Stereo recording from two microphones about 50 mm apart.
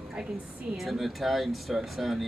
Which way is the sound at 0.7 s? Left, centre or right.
Centre.